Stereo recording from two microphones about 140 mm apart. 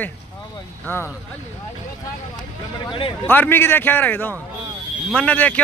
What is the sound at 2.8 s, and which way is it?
Speech, 35° left (ahead or behind).